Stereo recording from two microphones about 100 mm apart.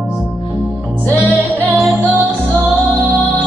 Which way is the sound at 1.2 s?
20° right (ahead or behind).